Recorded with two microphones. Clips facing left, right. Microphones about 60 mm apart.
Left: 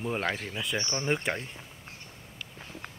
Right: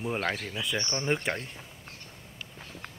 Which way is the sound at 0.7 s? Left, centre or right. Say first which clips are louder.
Even; left.